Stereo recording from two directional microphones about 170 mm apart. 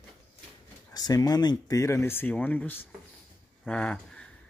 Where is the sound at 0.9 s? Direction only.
20° left (ahead or behind).